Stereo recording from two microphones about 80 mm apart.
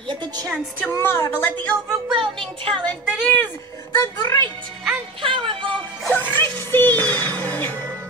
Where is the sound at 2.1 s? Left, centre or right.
Right.